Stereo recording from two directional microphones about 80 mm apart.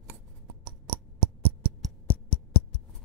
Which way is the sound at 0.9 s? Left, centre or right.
Right.